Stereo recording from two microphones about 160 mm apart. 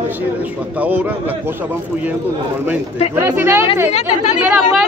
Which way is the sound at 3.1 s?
15° right (ahead or behind).